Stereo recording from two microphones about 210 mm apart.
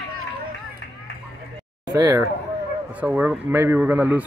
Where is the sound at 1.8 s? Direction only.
15° right (ahead or behind).